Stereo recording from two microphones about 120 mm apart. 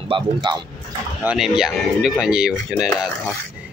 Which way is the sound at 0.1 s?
40° right (ahead or behind).